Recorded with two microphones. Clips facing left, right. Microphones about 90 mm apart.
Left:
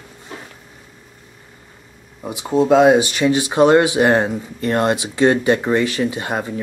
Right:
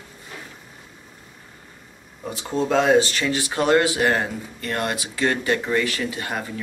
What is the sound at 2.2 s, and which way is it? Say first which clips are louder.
Speech: left 7 dB; 15° left (ahead or behind).